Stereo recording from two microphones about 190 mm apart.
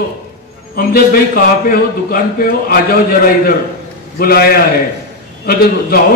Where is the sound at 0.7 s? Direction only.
50° left (ahead or behind).